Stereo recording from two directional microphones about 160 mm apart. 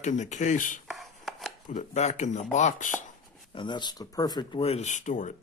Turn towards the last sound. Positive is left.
turn(degrees=50)  # may be behind; listen again after turning